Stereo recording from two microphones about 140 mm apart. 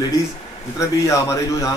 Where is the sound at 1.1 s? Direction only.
20° left (ahead or behind).